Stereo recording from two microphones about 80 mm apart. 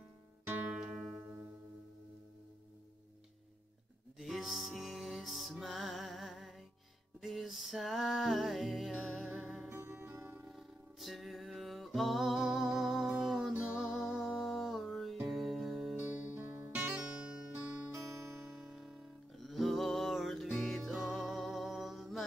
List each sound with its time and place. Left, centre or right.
0.7 s music: centre
1.2 s music: right
4.2 s music: centre
9.7 s music: right
10.4 s music: centre
16.3 s music: right
16.7 s music: centre